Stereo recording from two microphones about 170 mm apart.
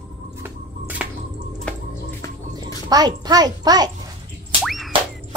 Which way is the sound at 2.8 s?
25° right (ahead or behind).